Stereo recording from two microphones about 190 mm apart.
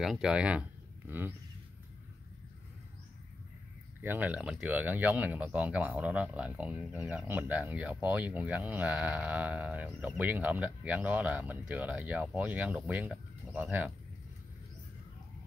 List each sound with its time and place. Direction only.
0.0 s speech: 5° right (ahead or behind)
4.0 s speech: 10° right (ahead or behind)